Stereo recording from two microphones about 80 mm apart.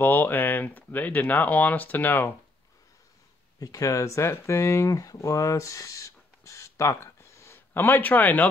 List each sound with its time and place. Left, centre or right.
0.0 s speech: left
3.5 s speech: left